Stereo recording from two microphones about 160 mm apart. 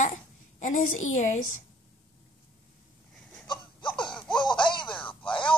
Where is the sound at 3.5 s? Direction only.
30° left (ahead or behind).